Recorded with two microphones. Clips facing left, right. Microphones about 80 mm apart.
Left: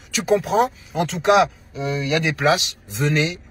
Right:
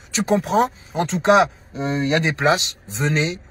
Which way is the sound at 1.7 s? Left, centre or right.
Right.